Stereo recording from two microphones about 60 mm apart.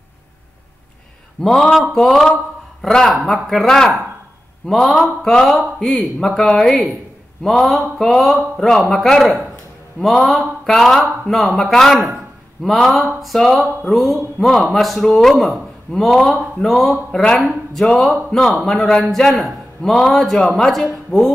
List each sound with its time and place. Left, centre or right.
1.4 s a man's voice: centre